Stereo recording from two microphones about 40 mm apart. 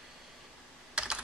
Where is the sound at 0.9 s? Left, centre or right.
Right.